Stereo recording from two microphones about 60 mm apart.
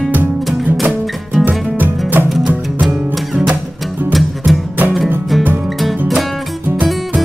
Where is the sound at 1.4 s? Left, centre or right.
Centre.